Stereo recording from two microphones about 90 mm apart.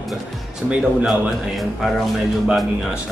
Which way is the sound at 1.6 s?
Centre (ahead or behind).